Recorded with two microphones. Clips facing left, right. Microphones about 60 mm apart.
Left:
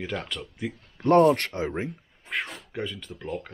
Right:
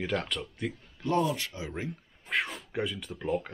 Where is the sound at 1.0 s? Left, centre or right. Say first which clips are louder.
Left 10 dB; left.